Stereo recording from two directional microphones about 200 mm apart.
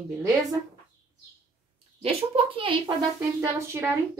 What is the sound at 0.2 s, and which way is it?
Speech, 15° right (ahead or behind).